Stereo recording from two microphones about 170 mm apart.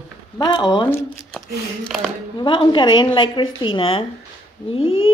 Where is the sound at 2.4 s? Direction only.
30° left (ahead or behind).